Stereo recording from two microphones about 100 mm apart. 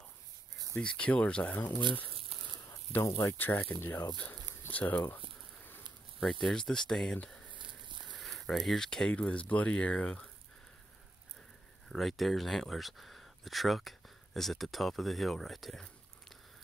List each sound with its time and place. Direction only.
0.7 s speech: 10° left (ahead or behind)
1.7 s speech: 50° right (ahead or behind)
2.3 s a sound: 90° right
3.2 s speech: 25° left (ahead or behind)
6.4 s speech: 5° left (ahead or behind)
7.5 s a sound: 55° right (ahead or behind)
8.2 s speech: 5° left (ahead or behind)
11.9 s speech: centre (ahead or behind)